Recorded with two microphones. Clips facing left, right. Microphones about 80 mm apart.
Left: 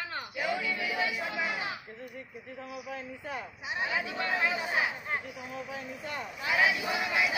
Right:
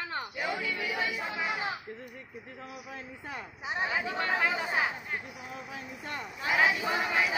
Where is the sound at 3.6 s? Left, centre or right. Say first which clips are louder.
Right 2 dB; right.